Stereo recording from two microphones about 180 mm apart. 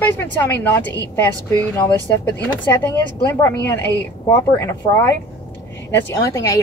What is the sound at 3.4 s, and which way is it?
A woman's voice, 15° left (ahead or behind).